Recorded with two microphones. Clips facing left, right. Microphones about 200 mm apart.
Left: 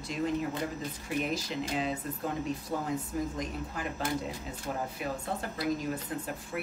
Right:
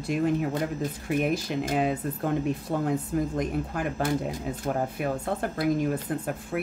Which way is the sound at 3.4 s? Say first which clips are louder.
Right 7 dB; 55° right (ahead or behind).